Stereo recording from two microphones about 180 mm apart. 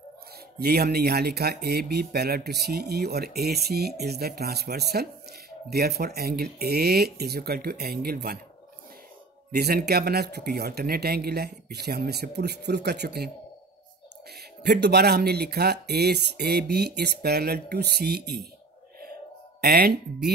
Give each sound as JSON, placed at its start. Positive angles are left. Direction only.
{"t": 0.6, "sound": "speech", "side_deg": -60}
{"t": 9.5, "sound": "speech", "side_deg": -60}
{"t": 14.6, "sound": "speech", "side_deg": -65}
{"t": 19.6, "sound": "speech", "side_deg": -60}